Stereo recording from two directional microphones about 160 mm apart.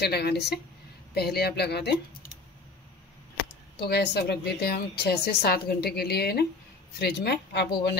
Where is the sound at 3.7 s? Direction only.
85° left.